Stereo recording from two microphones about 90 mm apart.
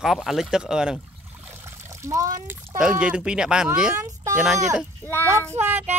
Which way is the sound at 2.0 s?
35° right (ahead or behind).